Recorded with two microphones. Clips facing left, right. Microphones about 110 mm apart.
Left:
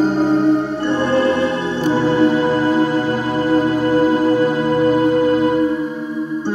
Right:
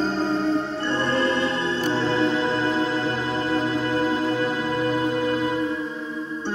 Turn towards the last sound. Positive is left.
turn(degrees=50)  # may be behind; listen again after turning